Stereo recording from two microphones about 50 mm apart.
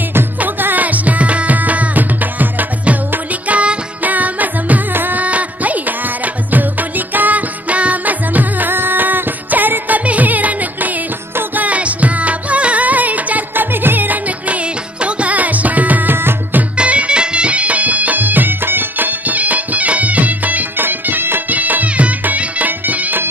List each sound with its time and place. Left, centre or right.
0.4 s music: right
14.5 s music: right
16.7 s music: right